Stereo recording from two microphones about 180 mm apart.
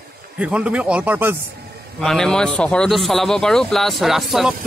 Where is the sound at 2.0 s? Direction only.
5° left (ahead or behind).